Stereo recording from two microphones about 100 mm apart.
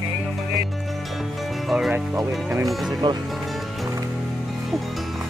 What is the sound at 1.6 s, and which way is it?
Music, 5° right (ahead or behind).